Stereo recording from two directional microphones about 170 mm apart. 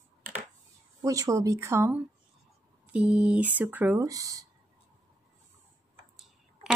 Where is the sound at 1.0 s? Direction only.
20° right (ahead or behind).